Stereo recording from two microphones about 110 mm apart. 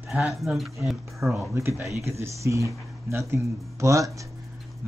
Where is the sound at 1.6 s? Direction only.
20° right (ahead or behind).